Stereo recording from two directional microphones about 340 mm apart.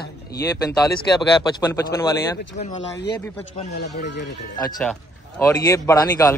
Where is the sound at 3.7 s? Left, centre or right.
Left.